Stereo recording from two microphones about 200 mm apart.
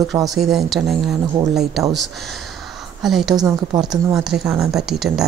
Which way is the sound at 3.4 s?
20° right (ahead or behind).